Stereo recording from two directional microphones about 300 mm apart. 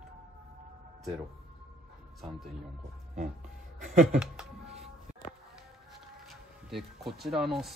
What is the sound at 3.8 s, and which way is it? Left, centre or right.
Speech, right.